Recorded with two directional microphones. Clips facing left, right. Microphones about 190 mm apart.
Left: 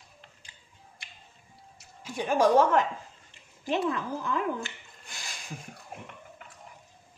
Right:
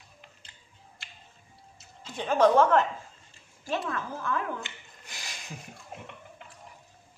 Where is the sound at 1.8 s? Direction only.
10° left (ahead or behind).